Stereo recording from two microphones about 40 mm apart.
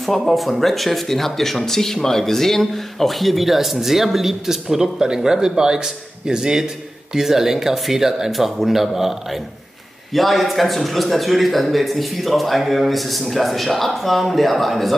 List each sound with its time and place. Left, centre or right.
0.0 s speech: centre